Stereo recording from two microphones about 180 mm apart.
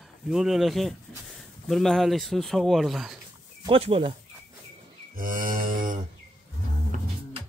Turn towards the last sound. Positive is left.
turn(degrees=-50)  # may be behind; listen again after turning